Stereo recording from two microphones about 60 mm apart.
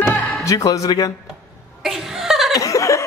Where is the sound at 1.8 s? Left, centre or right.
Centre.